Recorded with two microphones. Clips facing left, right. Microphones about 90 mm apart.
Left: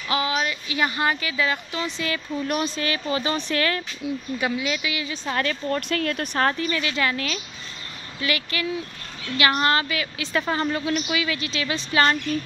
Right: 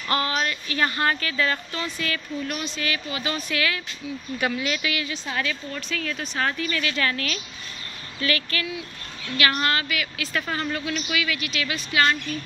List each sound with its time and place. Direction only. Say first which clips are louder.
0.1 s speech: left 1 dB; 5° left (ahead or behind)
2.4 s speech: left 7 dB; 40° left (ahead or behind)
4.4 s speech: right 2 dB; 10° left (ahead or behind)
5.2 s speech: left 3 dB; 45° left (ahead or behind)
6.4 s a woman's voice: left 2 dB; 30° left (ahead or behind)